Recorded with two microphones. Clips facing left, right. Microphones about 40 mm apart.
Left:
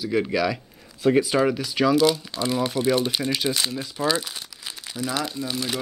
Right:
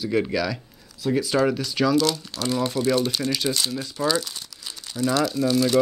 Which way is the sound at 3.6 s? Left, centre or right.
Centre.